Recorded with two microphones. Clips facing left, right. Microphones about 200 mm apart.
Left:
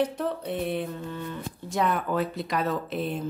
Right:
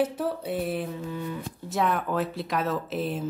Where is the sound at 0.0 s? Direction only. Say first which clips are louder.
Even; 5° right (ahead or behind).